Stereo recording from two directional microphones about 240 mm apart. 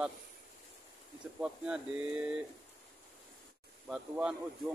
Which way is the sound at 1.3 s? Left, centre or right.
Centre.